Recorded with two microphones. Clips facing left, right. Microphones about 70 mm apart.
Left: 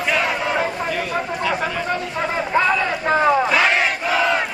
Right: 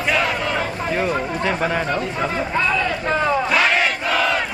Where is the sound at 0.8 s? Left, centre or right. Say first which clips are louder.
Right 2 dB; right.